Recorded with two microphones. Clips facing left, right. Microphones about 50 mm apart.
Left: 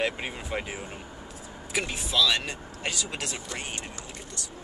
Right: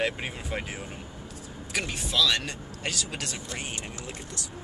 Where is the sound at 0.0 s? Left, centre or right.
Centre.